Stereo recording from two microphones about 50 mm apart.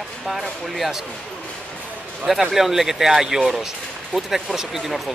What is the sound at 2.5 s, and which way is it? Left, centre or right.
Speech, centre.